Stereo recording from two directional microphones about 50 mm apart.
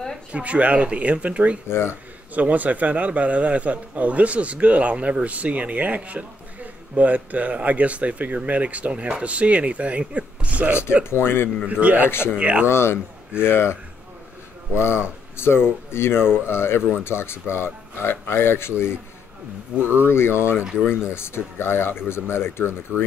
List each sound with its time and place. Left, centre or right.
0.3 s speech: right
1.7 s speech: left
2.3 s speech: right
11.1 s speech: left
11.6 s speech: right
12.6 s speech: left
19.8 s speech: right
20.1 s speech: left